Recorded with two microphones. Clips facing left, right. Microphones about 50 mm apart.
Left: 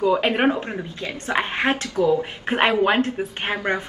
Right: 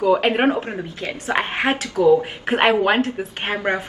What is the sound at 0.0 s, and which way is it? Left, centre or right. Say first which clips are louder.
A woman's voice: right 2 dB; centre.